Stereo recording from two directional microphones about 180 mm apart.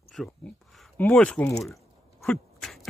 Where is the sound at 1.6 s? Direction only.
Centre (ahead or behind).